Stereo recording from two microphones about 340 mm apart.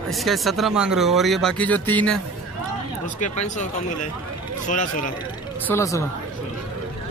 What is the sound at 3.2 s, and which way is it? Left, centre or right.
Speech, left.